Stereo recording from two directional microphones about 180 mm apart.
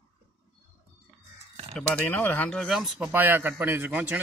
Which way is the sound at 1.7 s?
5° left (ahead or behind).